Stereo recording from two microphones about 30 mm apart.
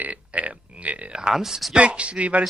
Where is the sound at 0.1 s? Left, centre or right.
Right.